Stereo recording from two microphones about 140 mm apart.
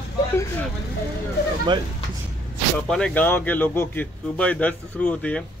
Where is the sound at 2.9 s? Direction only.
10° left (ahead or behind).